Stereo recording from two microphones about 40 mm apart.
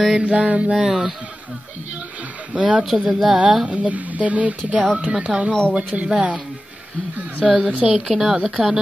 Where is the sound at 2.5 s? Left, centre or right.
Right.